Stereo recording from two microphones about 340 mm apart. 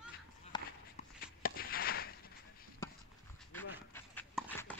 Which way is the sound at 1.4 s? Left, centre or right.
Left.